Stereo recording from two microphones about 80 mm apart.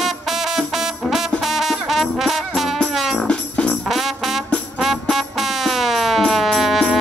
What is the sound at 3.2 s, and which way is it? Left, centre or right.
Music, centre.